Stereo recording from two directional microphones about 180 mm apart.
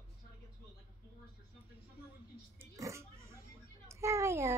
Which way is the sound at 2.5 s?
15° right (ahead or behind).